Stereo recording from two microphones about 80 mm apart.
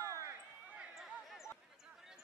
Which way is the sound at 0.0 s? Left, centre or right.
Right.